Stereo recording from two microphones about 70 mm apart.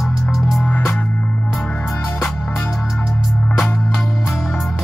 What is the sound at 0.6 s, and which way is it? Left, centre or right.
Music, centre.